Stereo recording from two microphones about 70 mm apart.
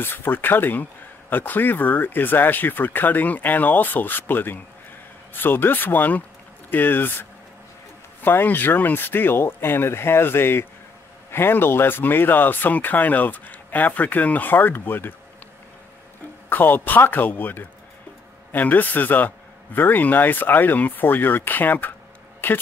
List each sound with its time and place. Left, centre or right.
0.0 s speech: left
16.4 s speech: left